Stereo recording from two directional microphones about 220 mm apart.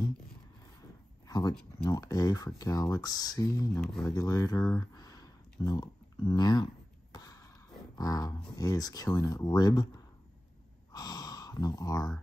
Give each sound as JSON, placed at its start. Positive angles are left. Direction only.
{"t": 1.2, "sound": "a sound", "side_deg": 15}
{"t": 1.5, "sound": "speech", "side_deg": 5}
{"t": 1.9, "sound": "speech", "side_deg": 15}
{"t": 3.8, "sound": "speech", "side_deg": 0}
{"t": 4.1, "sound": "a sound", "side_deg": 15}
{"t": 8.5, "sound": "speech", "side_deg": 15}
{"t": 10.9, "sound": "gasp", "side_deg": 20}